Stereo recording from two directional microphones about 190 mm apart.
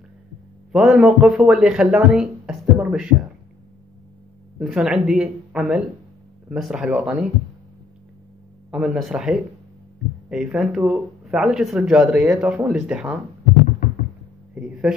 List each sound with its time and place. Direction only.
0.7 s speech: 5° right (ahead or behind)
4.6 s speech: centre (ahead or behind)
8.7 s speech: centre (ahead or behind)
13.8 s knock: 50° left (ahead or behind)
14.5 s speech: 5° right (ahead or behind)